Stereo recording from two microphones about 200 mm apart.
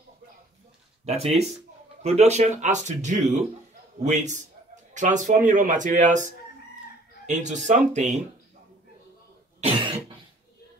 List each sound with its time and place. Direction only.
1.0 s speech: 30° right (ahead or behind)
7.2 s speech: 35° right (ahead or behind)
9.6 s cough: 25° right (ahead or behind)